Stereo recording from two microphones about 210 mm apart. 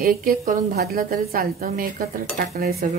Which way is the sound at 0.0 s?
40° right (ahead or behind).